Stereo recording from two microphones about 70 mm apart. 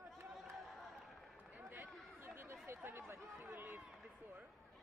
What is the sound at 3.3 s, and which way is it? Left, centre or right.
Run, right.